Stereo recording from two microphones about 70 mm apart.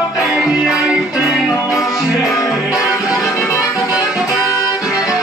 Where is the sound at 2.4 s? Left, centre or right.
Left.